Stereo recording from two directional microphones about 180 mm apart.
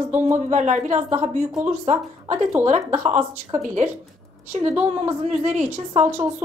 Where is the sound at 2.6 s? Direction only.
40° right (ahead or behind).